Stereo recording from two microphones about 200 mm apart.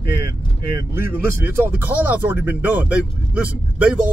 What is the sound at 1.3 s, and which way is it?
Speech, 10° right (ahead or behind).